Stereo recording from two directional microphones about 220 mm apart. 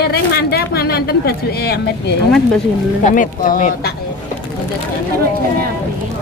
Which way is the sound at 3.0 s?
35° left (ahead or behind).